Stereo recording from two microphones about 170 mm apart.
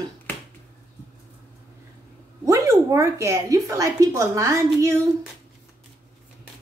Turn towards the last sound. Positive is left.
turn(degrees=-20)  # may be behind; listen again after turning